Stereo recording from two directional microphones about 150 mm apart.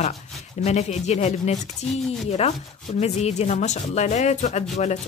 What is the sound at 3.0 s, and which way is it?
Speech, 45° left (ahead or behind).